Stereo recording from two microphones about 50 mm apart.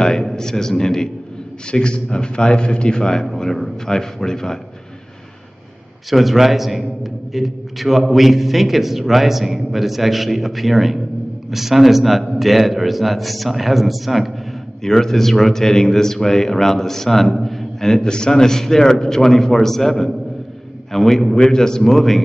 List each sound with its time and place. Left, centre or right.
0.0 s speech: centre
6.0 s a man's voice: centre
14.8 s speech: centre